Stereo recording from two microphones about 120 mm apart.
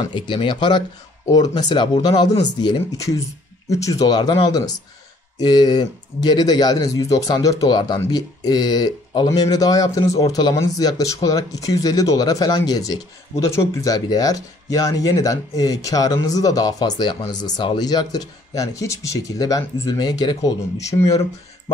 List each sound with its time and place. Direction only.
0.0 s speech: 40° left (ahead or behind)